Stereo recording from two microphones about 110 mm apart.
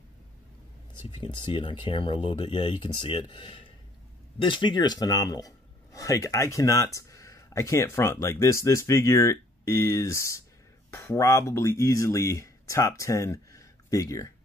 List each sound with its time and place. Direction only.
1.1 s speech: 50° left (ahead or behind); by 14.3 s 30° left (ahead or behind)